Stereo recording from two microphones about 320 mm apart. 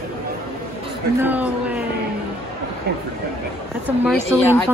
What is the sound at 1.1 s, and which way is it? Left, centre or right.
Speech, centre.